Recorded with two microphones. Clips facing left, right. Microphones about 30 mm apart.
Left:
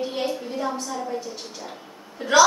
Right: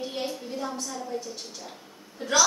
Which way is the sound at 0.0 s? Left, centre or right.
Centre.